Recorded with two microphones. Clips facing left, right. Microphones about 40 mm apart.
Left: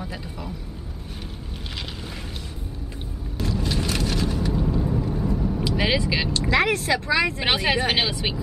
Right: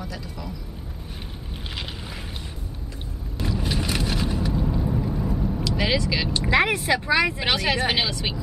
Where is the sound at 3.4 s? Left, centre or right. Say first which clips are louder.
Left 1 dB; centre.